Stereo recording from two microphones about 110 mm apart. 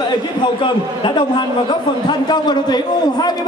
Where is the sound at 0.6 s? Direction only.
45° left (ahead or behind).